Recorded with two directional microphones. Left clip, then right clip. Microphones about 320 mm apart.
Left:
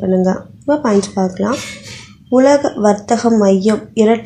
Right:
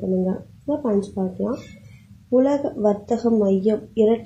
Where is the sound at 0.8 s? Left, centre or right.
Left.